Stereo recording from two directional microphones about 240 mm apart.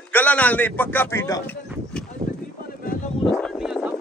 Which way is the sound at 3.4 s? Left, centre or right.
Centre.